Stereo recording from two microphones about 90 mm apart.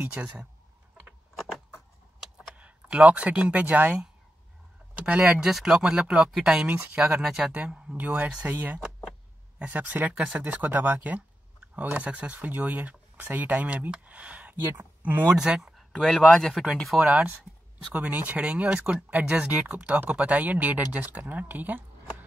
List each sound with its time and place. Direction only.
0.0 s speech: 15° right (ahead or behind)
2.5 s speech: 15° right (ahead or behind)
6.6 s speech: 20° right (ahead or behind); by 7.5 s 5° right (ahead or behind)
7.5 s speech: 15° right (ahead or behind)
15.2 s speech: 5° right (ahead or behind)
17.0 s speech: 5° right (ahead or behind)
17.9 s speech: 20° right (ahead or behind)